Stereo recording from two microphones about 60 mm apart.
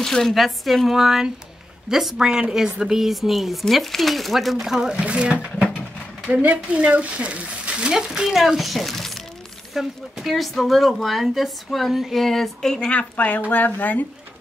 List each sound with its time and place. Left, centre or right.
0.0 s speech: centre
4.9 s speech: centre
12.9 s speech: left